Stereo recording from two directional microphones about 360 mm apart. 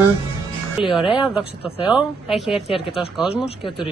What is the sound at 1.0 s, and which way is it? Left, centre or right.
Speech, centre.